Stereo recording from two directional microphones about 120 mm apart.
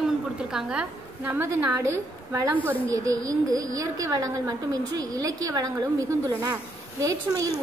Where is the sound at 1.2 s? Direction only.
20° right (ahead or behind).